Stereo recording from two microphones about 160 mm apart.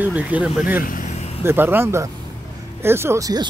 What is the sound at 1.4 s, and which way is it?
Speech, 15° right (ahead or behind).